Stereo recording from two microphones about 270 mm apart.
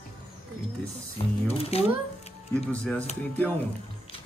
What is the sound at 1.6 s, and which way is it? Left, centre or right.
Speech, left.